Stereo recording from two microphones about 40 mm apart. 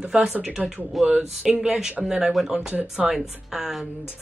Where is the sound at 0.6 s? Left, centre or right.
Right.